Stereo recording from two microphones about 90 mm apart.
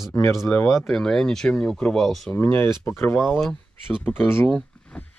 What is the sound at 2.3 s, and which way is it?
Speech, 20° left (ahead or behind).